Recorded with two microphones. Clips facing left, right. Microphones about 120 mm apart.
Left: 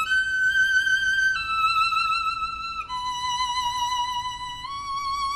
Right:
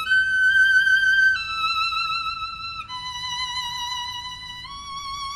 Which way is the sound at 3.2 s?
40° left (ahead or behind).